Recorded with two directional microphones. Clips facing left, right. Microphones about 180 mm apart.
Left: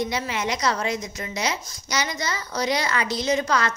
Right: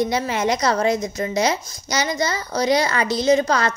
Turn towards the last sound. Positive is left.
turn(degrees=-35)  # may be behind; listen again after turning